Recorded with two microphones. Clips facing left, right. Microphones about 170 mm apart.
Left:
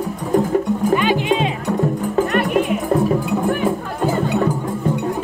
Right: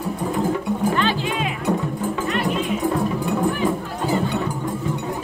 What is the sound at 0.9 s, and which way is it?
Music, 15° left (ahead or behind).